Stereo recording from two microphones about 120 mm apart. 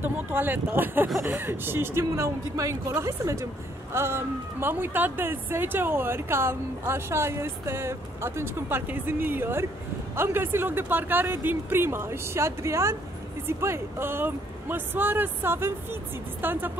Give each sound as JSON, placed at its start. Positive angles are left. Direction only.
{"t": 0.0, "sound": "speech", "side_deg": -15}